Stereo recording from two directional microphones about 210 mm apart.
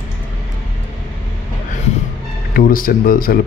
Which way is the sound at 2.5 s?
40° left (ahead or behind).